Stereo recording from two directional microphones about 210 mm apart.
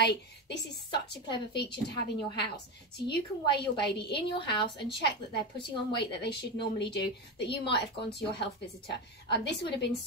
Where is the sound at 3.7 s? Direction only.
50° left (ahead or behind).